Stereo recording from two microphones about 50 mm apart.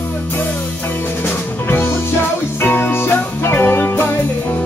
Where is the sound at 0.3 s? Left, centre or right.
Left.